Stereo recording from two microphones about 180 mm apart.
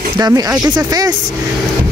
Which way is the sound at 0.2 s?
20° right (ahead or behind).